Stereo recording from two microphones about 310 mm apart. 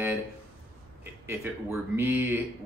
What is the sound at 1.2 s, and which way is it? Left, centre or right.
Speech, centre.